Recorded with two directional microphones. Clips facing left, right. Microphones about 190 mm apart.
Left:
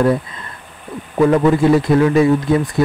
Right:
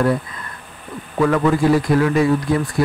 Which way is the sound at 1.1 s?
25° left (ahead or behind).